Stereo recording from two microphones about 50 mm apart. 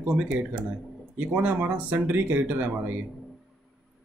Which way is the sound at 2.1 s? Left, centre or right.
Right.